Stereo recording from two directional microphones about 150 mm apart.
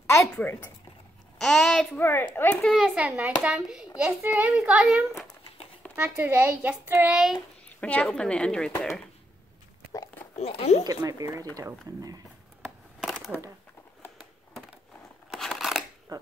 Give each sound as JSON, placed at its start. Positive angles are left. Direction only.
{"t": 0.3, "sound": "a woman's voice", "side_deg": 10}
{"t": 2.0, "sound": "speech", "side_deg": 15}
{"t": 2.6, "sound": "a woman's voice", "side_deg": 5}
{"t": 2.9, "sound": "a child's voice", "side_deg": -10}
{"t": 7.8, "sound": "a woman's voice", "side_deg": 5}
{"t": 10.4, "sound": "speech", "side_deg": 45}
{"t": 10.8, "sound": "speech", "side_deg": -25}
{"t": 13.0, "sound": "a sound", "side_deg": 0}
{"t": 15.2, "sound": "scissors", "side_deg": 0}
{"t": 16.1, "sound": "dog", "side_deg": -25}